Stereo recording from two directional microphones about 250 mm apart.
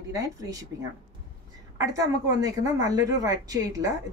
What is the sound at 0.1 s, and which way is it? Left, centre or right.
Speech, centre.